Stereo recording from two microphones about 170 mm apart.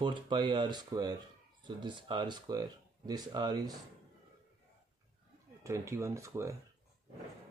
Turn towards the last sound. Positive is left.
turn(degrees=-15)  # may be behind; listen again after turning